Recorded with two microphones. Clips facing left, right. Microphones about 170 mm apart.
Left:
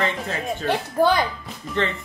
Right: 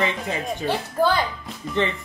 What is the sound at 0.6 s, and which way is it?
Speech, 15° left (ahead or behind).